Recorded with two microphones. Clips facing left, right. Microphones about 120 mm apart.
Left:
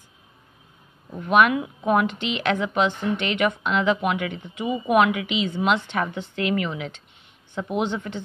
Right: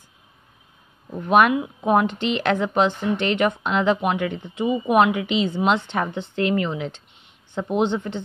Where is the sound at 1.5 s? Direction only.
25° right (ahead or behind).